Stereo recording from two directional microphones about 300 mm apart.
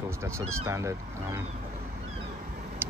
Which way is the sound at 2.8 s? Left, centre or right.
Centre.